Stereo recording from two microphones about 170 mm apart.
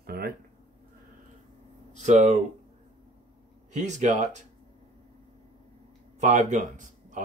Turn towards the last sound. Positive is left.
turn(degrees=-45)  # may be behind; listen again after turning